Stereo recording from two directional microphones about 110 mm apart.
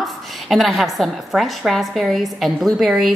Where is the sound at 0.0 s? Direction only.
Centre (ahead or behind).